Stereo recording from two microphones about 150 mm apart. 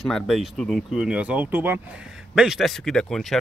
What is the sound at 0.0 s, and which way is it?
Speech, centre (ahead or behind).